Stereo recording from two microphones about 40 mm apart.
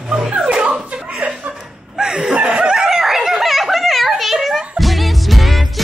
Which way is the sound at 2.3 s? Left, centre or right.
Right.